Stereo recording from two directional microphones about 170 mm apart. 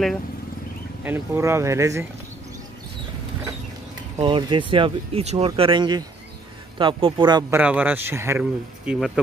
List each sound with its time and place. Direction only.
1.0 s speech: 15° right (ahead or behind)
4.2 s speech: 30° right (ahead or behind)
7.5 s speech: 10° right (ahead or behind)